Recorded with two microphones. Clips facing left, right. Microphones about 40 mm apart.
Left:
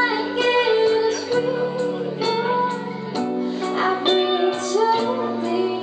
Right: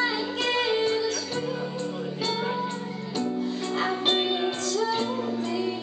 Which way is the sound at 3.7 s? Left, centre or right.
Centre.